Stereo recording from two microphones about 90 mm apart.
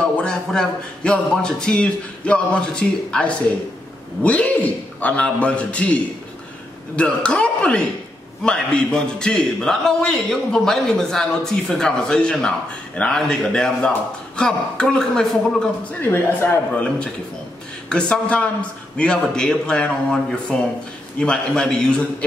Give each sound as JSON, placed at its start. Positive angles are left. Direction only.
{"t": 0.0, "sound": "a man's voice", "side_deg": 10}
{"t": 16.0, "sound": "speech", "side_deg": 20}
{"t": 17.8, "sound": "a man's voice", "side_deg": 10}